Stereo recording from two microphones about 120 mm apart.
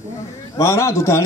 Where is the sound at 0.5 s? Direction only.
25° left (ahead or behind).